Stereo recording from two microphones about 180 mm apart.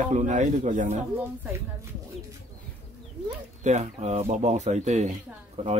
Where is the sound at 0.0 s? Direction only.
45° right (ahead or behind).